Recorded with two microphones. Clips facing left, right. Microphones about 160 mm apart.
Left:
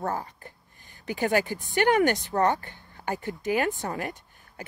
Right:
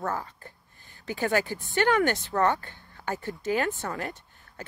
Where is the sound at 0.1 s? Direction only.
15° left (ahead or behind).